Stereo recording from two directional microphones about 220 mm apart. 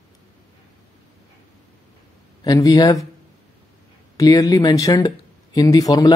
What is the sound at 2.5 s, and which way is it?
Speech, 15° left (ahead or behind).